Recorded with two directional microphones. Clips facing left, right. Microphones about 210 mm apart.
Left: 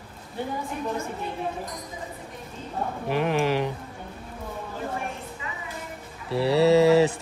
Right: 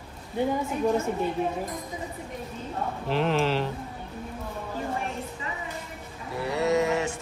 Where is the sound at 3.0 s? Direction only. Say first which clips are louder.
Left 1 dB; 10° left (ahead or behind).